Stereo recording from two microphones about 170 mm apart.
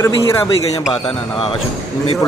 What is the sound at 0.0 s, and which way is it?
Speech, 20° left (ahead or behind).